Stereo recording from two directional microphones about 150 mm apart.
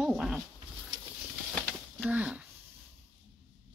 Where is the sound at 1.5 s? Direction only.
5° left (ahead or behind).